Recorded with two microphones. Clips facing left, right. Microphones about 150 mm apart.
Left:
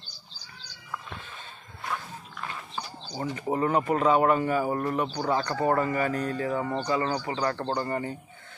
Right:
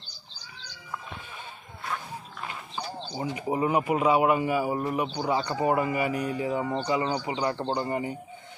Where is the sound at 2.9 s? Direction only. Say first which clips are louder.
Right 2 dB; 30° right (ahead or behind).